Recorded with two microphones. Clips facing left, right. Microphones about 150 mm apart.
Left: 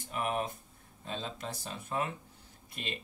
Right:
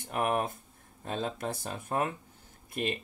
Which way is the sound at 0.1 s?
55° right (ahead or behind).